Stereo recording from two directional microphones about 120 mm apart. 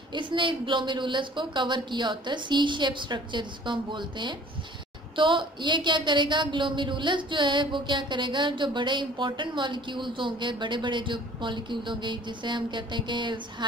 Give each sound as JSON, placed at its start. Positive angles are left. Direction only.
{"t": 0.1, "sound": "a woman's voice", "side_deg": -40}